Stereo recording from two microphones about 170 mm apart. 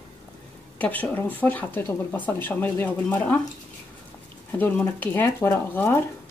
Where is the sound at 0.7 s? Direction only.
10° left (ahead or behind).